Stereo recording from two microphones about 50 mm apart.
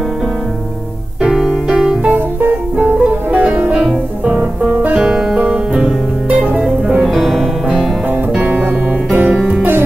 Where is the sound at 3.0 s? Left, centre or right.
Right.